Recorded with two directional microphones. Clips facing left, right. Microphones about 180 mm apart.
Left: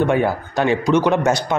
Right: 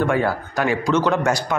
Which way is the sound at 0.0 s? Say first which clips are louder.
Left 2 dB; 20° left (ahead or behind).